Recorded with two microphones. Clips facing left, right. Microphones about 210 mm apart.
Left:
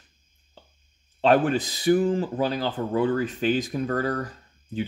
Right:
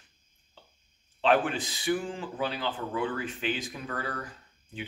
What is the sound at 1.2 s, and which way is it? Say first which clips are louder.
Speech: left 5 dB; 40° left (ahead or behind).